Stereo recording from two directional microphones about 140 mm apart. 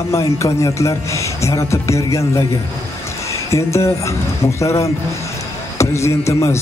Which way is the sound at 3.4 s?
20° left (ahead or behind).